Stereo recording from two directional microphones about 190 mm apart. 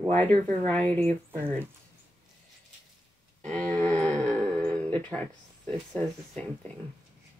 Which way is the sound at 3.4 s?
5° left (ahead or behind).